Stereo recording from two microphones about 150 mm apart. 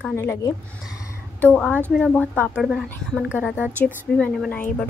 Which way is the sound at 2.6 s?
5° right (ahead or behind).